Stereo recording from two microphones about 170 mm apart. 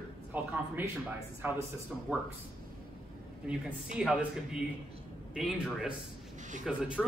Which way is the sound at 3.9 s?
5° right (ahead or behind).